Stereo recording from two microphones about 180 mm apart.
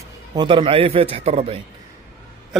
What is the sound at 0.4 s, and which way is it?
A man's voice, 30° right (ahead or behind).